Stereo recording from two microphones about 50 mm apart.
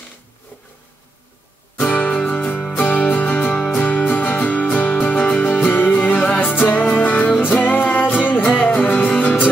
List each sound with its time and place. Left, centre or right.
1.8 s music: left